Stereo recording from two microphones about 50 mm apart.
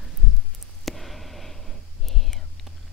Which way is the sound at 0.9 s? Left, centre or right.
Centre.